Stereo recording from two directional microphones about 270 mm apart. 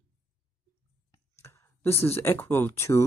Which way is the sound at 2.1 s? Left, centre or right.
Centre.